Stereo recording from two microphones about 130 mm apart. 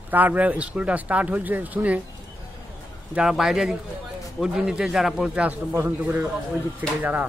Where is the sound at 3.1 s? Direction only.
5° right (ahead or behind).